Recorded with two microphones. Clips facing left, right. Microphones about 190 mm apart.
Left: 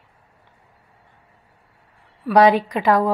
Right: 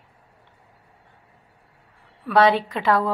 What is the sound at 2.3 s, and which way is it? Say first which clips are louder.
Speech: left 3 dB; 15° left (ahead or behind).